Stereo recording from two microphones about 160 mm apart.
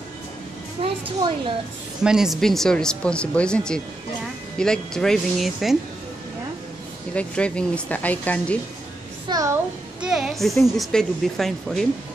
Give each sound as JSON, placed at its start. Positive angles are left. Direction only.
{"t": 0.8, "sound": "speech", "side_deg": -35}
{"t": 2.0, "sound": "speech", "side_deg": -5}
{"t": 7.2, "sound": "speech", "side_deg": 5}
{"t": 9.3, "sound": "a child's voice", "side_deg": -20}
{"t": 10.0, "sound": "speech", "side_deg": -5}